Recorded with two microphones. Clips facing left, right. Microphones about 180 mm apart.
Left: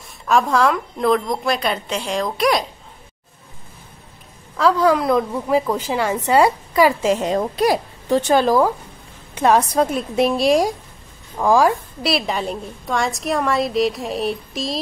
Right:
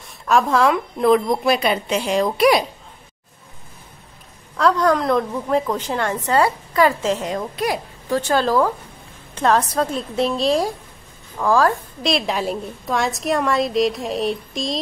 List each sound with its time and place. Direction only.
0.2 s a woman's voice: centre (ahead or behind)
4.6 s a woman's voice: 5° left (ahead or behind)
7.3 s a child's voice: 35° left (ahead or behind)
8.1 s a woman's voice: 20° left (ahead or behind); by 14.8 s 5° left (ahead or behind)